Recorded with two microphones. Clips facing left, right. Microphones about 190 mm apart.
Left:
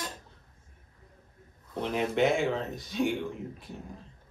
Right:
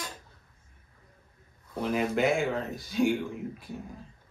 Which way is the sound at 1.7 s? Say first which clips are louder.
Right 2 dB; 5° right (ahead or behind).